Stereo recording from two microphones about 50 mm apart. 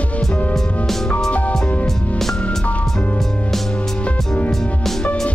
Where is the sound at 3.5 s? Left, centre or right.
Centre.